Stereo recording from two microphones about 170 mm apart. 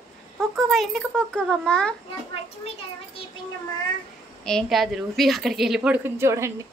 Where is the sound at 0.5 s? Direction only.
Centre (ahead or behind).